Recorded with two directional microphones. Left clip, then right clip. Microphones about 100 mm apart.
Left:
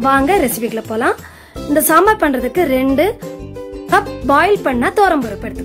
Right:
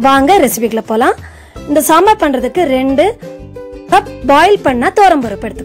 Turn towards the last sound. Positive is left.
turn(degrees=-45)  # may be behind; listen again after turning